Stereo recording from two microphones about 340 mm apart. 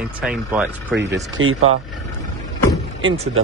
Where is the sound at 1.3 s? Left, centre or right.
Right.